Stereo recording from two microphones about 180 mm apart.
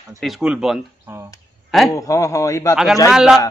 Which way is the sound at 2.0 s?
20° left (ahead or behind).